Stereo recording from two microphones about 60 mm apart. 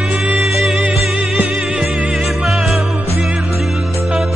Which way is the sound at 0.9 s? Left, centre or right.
Right.